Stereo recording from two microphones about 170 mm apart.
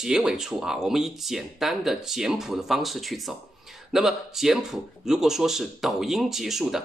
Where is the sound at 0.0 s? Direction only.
5° right (ahead or behind).